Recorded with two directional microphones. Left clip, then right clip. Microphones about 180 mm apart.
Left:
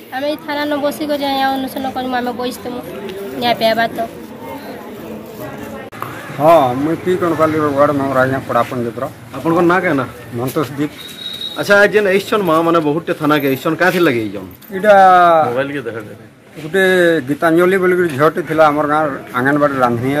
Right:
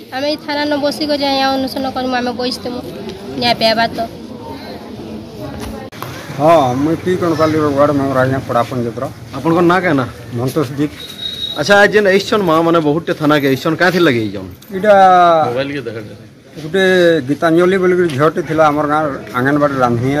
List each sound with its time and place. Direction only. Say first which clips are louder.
0.1 s speech: right 2 dB; centre (ahead or behind)
6.4 s speech: even; centre (ahead or behind)
9.4 s a man's voice: right 1 dB; 15° right (ahead or behind)
14.8 s speech: even; 5° left (ahead or behind)
15.5 s a man's voice: even; 20° left (ahead or behind)
16.7 s speech: right 1 dB; centre (ahead or behind)